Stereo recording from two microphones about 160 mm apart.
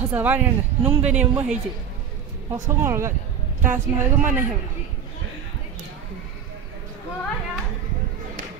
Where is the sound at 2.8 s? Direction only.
15° right (ahead or behind).